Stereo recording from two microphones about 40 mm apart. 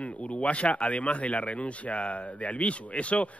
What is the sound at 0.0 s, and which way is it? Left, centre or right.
Speech, left.